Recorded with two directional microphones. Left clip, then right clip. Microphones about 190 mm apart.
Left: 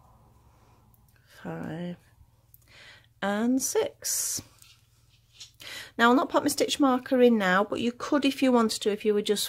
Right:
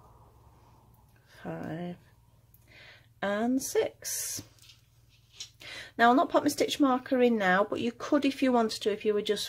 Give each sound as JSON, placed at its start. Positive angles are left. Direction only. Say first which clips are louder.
{"t": 1.3, "sound": "speech", "louder": "left 1 dB", "side_deg": 20}
{"t": 5.6, "sound": "speech", "louder": "left 1 dB", "side_deg": 25}